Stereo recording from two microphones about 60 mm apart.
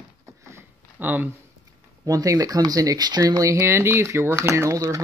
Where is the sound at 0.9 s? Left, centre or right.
Right.